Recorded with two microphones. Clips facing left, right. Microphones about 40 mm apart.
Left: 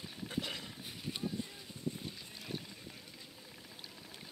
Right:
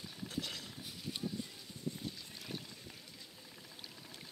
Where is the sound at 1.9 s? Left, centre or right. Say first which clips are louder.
Even; centre.